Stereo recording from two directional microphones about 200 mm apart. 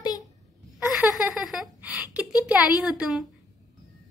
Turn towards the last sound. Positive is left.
turn(degrees=-5)  # may be behind; listen again after turning